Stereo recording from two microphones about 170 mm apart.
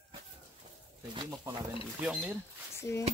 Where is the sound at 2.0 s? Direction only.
5° right (ahead or behind).